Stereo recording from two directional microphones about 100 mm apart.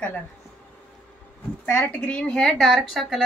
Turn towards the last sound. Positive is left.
turn(degrees=0)  # may be behind; listen again after turning